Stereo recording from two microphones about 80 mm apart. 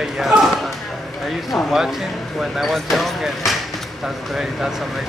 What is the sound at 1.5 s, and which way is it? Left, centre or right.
Speech, centre.